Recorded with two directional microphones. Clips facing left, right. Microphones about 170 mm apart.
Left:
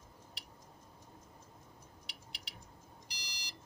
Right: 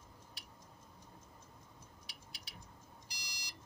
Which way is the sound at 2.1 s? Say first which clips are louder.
Left 2 dB; 75° left (ahead or behind).